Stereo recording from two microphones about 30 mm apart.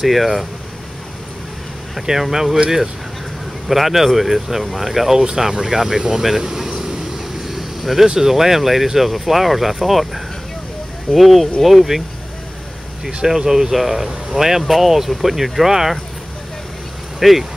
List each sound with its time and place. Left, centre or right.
0.0 s speech: centre
2.0 s speech: centre
3.6 s speech: centre
6.7 s vehicle: right
7.8 s speech: centre
13.2 s speech: centre
17.2 s speech: centre